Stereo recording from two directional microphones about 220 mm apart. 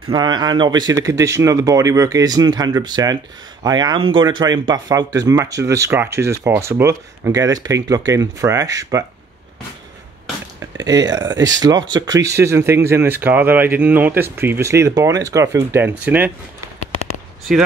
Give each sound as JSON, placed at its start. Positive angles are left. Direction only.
{"t": 0.1, "sound": "speech", "side_deg": -20}
{"t": 10.6, "sound": "speech", "side_deg": -15}